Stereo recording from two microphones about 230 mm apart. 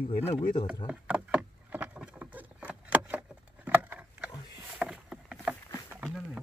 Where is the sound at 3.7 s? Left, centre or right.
Centre.